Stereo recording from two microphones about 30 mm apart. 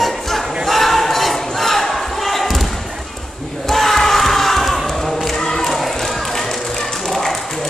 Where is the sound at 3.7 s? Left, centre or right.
Centre.